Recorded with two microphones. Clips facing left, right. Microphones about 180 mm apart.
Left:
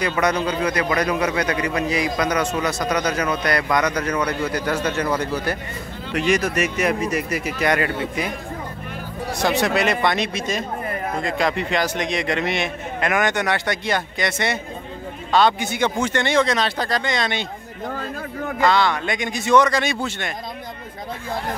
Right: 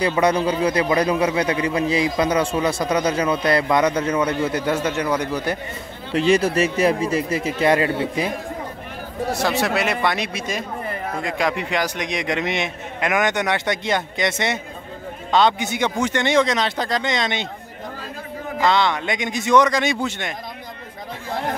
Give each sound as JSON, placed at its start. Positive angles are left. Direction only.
{"t": 0.5, "sound": "a man's voice", "side_deg": -30}
{"t": 6.1, "sound": "a man's voice", "side_deg": -30}
{"t": 9.4, "sound": "a man's voice", "side_deg": -5}
{"t": 18.6, "sound": "a man's voice", "side_deg": -20}